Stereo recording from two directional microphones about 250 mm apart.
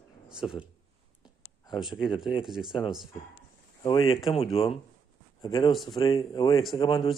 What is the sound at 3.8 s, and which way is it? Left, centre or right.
Speech, centre.